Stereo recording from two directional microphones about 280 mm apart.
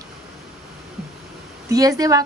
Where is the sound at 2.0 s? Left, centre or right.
Centre.